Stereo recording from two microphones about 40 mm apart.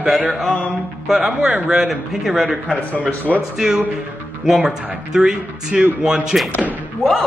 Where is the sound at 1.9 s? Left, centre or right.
Centre.